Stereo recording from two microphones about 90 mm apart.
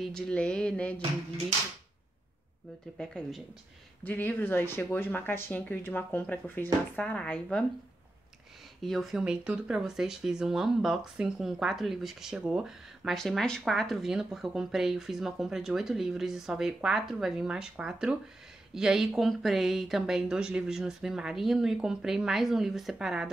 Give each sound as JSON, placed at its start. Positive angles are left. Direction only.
{"t": 0.0, "sound": "a sound", "side_deg": 5}
{"t": 3.0, "sound": "speech", "side_deg": 5}
{"t": 4.0, "sound": "speech", "side_deg": 20}
{"t": 8.8, "sound": "speech", "side_deg": 0}
{"t": 9.2, "sound": "speech", "side_deg": -10}